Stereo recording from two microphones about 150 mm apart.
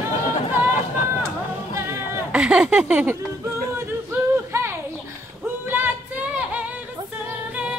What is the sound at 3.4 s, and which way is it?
Music, 20° right (ahead or behind).